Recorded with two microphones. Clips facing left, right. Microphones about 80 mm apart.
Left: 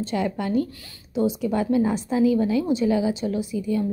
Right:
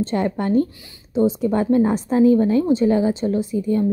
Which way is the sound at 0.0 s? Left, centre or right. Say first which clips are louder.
Right 4 dB; right.